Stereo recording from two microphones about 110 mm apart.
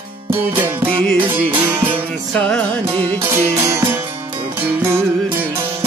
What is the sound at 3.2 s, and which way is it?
Music, 25° right (ahead or behind).